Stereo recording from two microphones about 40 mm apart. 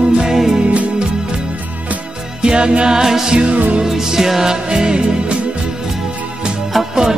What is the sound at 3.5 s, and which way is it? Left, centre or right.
Music, right.